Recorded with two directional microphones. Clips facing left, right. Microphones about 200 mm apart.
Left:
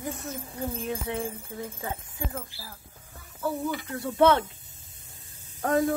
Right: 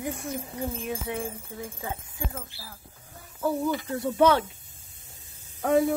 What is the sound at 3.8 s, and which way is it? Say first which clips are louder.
Speech: left 1 dB; 20° right (ahead or behind).